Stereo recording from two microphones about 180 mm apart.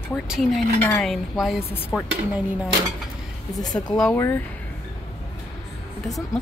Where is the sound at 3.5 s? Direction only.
20° left (ahead or behind).